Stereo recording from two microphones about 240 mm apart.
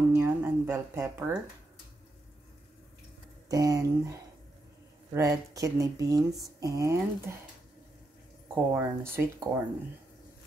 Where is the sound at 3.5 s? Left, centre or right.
Centre.